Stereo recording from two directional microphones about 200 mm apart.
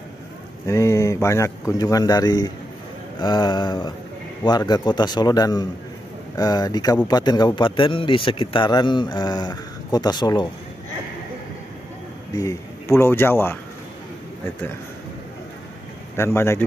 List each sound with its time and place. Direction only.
0.7 s a man's voice: 15° left (ahead or behind)
12.4 s a man's voice: 15° left (ahead or behind)
16.2 s a man's voice: 10° left (ahead or behind)